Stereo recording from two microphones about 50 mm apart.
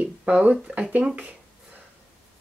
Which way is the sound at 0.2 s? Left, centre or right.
Right.